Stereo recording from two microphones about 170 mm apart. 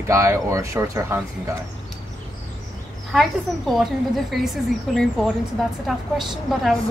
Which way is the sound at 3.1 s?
Centre (ahead or behind).